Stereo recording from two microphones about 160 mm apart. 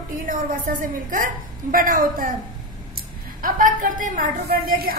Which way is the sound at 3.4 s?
55° right (ahead or behind).